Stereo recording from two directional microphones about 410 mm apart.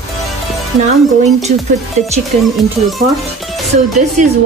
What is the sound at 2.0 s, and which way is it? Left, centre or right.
Speech, centre.